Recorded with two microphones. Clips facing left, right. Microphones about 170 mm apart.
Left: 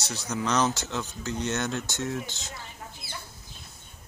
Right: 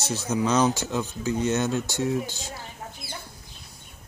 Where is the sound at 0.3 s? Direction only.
15° right (ahead or behind).